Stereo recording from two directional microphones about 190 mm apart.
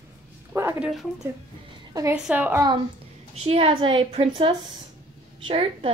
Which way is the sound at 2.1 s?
5° right (ahead or behind).